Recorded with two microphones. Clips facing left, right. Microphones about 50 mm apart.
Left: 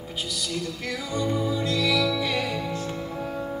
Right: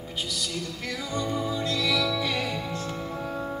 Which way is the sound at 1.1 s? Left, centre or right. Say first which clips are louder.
Left 3 dB; centre.